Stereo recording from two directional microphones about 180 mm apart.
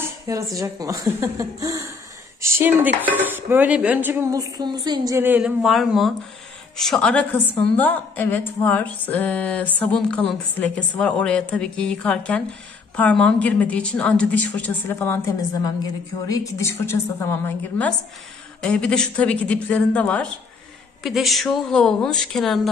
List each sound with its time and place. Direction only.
0.0 s dishes: 15° right (ahead or behind); by 6.1 s centre (ahead or behind)
6.8 s a woman's voice: 5° left (ahead or behind)